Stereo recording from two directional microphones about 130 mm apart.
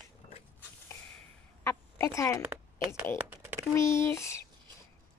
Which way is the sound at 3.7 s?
20° left (ahead or behind).